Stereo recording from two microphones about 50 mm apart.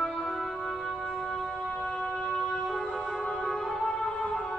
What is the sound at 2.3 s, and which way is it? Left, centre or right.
Music, centre.